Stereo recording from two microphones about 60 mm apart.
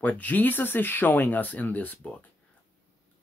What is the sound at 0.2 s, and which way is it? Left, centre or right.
Speech, left.